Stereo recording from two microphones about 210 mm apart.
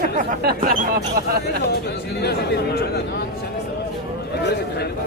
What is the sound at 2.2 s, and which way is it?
Speech, 50° left (ahead or behind).